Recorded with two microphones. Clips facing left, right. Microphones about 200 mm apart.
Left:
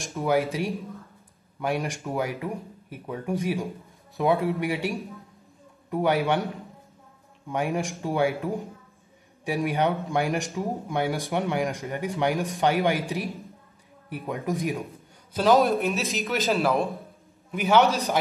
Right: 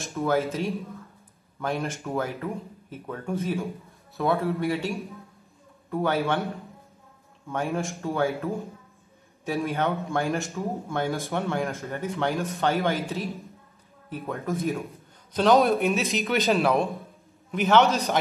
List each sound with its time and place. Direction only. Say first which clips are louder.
0.0 s speech: left 1 dB; 15° left (ahead or behind)
15.3 s a man's voice: even; centre (ahead or behind)